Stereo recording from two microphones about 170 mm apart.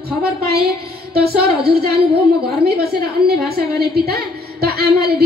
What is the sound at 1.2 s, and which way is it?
Speech, 70° right (ahead or behind).